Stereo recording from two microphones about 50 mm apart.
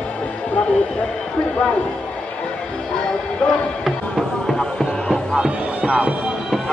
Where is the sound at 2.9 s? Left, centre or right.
Centre.